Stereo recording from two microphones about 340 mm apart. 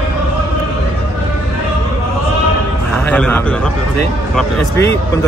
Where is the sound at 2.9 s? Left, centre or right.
Centre.